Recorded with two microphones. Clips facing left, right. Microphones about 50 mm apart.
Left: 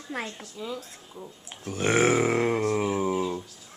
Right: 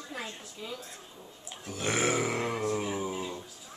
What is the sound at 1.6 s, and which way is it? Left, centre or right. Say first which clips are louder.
Speech: left 7 dB; left.